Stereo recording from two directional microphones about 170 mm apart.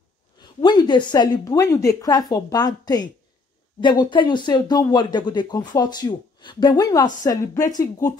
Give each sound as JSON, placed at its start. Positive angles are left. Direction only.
{"t": 0.4, "sound": "a woman's voice", "side_deg": 25}